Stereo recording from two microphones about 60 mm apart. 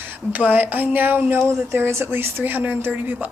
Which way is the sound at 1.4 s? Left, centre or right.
Right.